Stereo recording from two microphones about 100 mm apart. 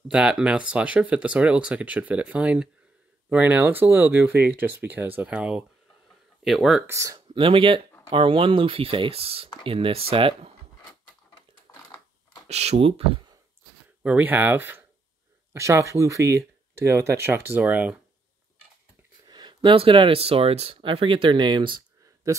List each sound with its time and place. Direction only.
0.1 s speech: 10° right (ahead or behind)
6.4 s speech: 5° right (ahead or behind)
6.9 s speech: 30° right (ahead or behind)
7.2 s speech: 60° right (ahead or behind)
11.7 s crushing: 35° left (ahead or behind)
12.4 s speech: 90° right
14.0 s speech: 15° right (ahead or behind)
19.2 s speech: 45° right (ahead or behind)